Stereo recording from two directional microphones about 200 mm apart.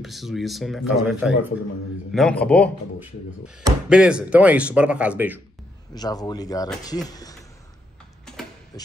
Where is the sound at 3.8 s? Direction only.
5° right (ahead or behind).